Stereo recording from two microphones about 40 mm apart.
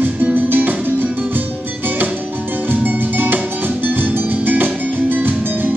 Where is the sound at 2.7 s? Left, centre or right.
Right.